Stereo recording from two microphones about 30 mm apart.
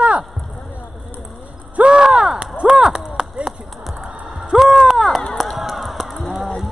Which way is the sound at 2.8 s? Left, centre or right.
Right.